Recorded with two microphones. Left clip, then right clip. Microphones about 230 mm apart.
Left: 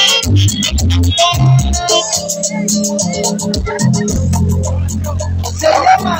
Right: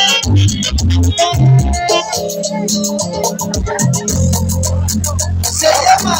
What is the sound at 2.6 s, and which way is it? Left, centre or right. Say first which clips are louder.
Speech: left 1 dB; centre.